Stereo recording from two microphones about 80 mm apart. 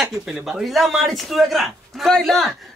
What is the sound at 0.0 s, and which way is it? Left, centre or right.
Speech, centre.